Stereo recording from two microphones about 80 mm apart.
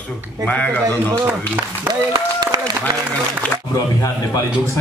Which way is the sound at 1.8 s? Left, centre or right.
Right.